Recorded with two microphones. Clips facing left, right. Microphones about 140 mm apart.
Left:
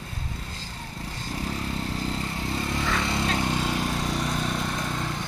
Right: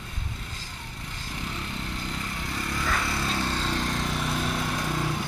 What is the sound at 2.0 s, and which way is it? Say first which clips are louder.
Vehicle: left 4 dB; 30° left (ahead or behind).